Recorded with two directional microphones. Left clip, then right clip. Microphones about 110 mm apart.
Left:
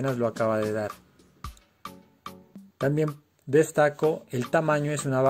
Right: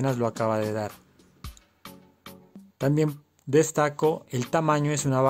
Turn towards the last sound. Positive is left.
turn(degrees=-25)  # may be behind; listen again after turning